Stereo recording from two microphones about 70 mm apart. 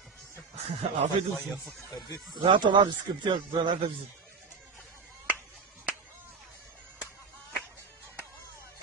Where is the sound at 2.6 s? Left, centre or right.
Right.